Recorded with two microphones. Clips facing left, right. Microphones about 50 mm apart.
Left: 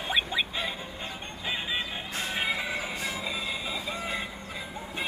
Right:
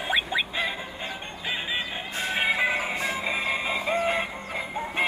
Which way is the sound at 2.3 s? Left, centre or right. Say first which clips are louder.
Right 7 dB; right.